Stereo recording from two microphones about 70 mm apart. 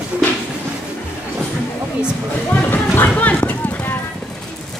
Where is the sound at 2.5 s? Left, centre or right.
Left.